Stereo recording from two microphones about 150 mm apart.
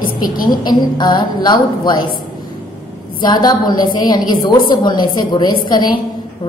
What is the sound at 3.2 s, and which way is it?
A woman's voice, 25° left (ahead or behind).